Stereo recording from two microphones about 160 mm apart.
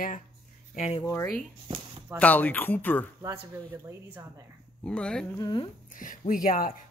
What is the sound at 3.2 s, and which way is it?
Speech, 20° right (ahead or behind).